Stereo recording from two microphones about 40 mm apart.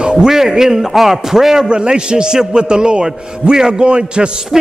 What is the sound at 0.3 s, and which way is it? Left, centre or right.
A man's voice, centre.